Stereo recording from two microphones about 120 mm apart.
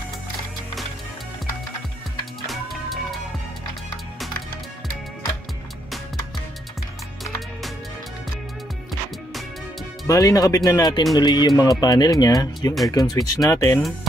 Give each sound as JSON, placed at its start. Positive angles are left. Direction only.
{"t": 2.4, "sound": "music", "side_deg": 0}
{"t": 10.0, "sound": "speech", "side_deg": 30}